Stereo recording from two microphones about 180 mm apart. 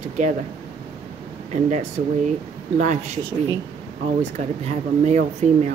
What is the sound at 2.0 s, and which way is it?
Speech, 50° right (ahead or behind).